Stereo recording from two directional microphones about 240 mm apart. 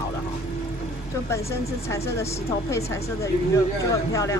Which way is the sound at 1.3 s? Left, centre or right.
Centre.